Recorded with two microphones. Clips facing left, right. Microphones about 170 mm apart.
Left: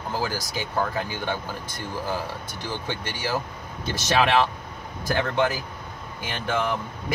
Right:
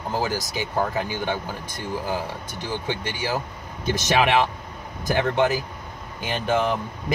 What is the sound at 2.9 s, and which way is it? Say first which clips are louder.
Speech: right 1 dB; 15° right (ahead or behind).